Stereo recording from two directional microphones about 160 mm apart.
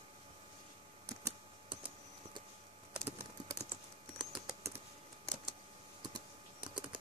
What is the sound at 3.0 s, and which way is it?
Typing, 15° right (ahead or behind).